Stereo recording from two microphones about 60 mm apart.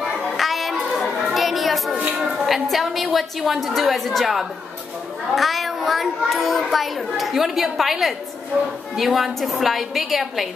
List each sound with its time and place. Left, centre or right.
0.0 s children playing: centre
2.0 s a sound: right
2.3 s a child's voice: centre